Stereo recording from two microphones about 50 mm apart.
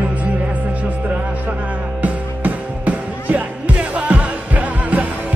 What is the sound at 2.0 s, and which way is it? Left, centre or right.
Music, right.